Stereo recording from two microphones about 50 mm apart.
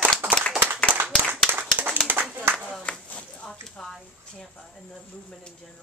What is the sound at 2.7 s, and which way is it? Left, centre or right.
Clapping, left.